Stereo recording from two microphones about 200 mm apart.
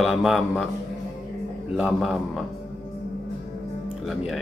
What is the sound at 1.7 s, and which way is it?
Speech, centre (ahead or behind).